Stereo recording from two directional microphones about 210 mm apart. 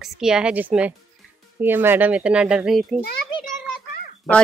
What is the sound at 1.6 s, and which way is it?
Speech, 10° right (ahead or behind).